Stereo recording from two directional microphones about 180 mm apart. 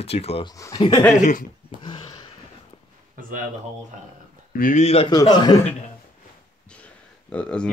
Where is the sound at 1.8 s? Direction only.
25° left (ahead or behind).